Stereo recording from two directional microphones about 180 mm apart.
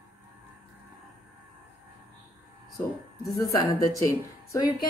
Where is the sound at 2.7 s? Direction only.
20° left (ahead or behind).